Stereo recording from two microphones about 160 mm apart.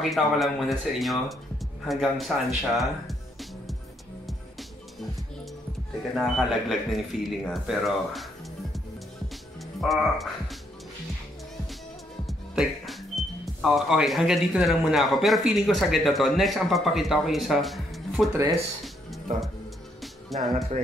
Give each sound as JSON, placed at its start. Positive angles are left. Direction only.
{"t": 0.0, "sound": "speech", "side_deg": 0}
{"t": 6.1, "sound": "speech", "side_deg": 0}
{"t": 9.8, "sound": "speech", "side_deg": 0}
{"t": 12.3, "sound": "speech", "side_deg": 0}
{"t": 20.3, "sound": "speech", "side_deg": 0}